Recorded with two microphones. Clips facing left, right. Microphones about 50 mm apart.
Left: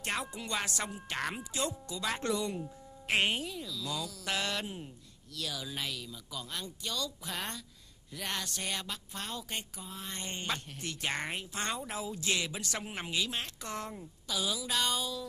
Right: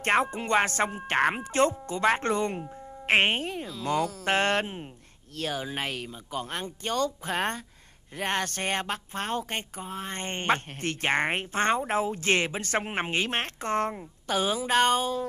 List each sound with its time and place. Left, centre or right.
0.0 s speech: right